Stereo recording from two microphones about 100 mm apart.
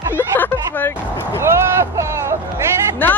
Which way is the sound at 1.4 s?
30° right (ahead or behind).